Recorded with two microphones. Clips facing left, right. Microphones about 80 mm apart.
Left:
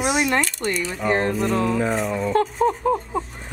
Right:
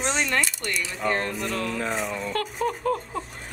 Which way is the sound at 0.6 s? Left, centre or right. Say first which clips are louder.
Left 6 dB; left.